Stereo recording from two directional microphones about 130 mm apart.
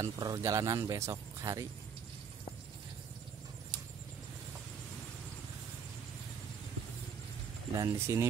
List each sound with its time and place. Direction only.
0.0 s speech: 25° right (ahead or behind)
7.7 s speech: 25° right (ahead or behind)